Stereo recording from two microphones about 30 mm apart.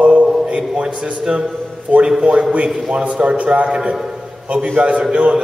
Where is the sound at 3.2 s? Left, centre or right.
Right.